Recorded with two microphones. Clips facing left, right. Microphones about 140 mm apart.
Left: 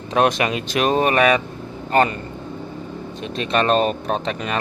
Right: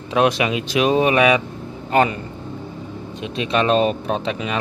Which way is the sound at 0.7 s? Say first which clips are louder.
Right 2 dB; 50° left (ahead or behind).